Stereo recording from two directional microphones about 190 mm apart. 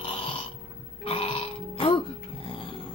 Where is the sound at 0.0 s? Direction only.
30° left (ahead or behind).